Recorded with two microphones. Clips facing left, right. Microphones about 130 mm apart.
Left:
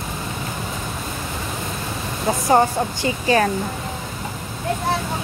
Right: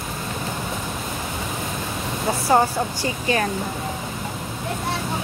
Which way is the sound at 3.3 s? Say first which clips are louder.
Left 5 dB; 35° left (ahead or behind).